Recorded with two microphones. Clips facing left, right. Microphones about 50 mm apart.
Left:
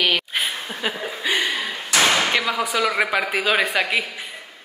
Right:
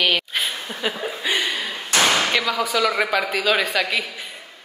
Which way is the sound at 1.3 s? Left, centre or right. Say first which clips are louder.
Left 2 dB; left.